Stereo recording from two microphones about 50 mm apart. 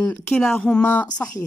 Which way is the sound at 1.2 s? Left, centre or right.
Left.